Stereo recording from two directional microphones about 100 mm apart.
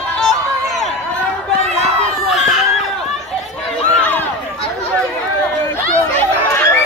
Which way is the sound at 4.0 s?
15° left (ahead or behind).